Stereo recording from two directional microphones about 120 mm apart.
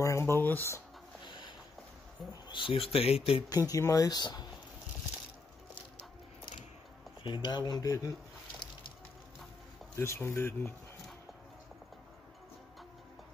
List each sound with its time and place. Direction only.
0.0 s a sound: 20° left (ahead or behind)
1.2 s a sound: 45° left (ahead or behind)
2.4 s speech: 40° left (ahead or behind)
3.4 s speech: 30° left (ahead or behind)
7.2 s speech: 40° left (ahead or behind)
9.9 s speech: 20° left (ahead or behind)